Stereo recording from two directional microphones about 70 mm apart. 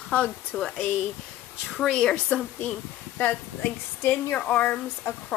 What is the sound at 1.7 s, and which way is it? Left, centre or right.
A woman's voice, centre.